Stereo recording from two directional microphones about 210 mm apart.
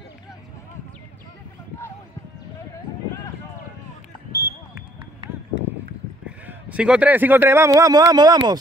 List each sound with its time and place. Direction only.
4.3 s basketball bounce: 45° left (ahead or behind)
6.2 s a man's voice: 5° right (ahead or behind)